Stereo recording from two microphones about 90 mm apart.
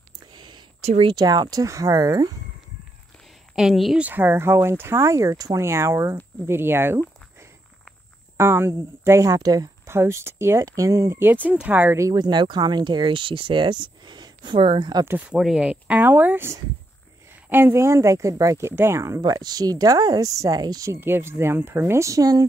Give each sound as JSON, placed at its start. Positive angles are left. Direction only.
{"t": 0.3, "sound": "speech", "side_deg": -60}
{"t": 3.5, "sound": "speech", "side_deg": 0}
{"t": 4.0, "sound": "speech", "side_deg": -20}
{"t": 8.4, "sound": "speech", "side_deg": -25}
{"t": 9.8, "sound": "speech", "side_deg": -30}
{"t": 11.4, "sound": "speech", "side_deg": -15}
{"t": 11.9, "sound": "speech", "side_deg": -35}
{"t": 12.2, "sound": "speech", "side_deg": -55}
{"t": 15.3, "sound": "speech", "side_deg": -5}
{"t": 20.9, "sound": "speech", "side_deg": -25}